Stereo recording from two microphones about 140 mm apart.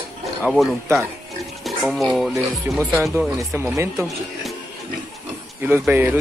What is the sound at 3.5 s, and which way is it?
Speech, 20° right (ahead or behind).